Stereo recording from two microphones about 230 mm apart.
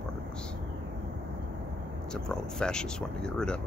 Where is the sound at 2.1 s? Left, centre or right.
Centre.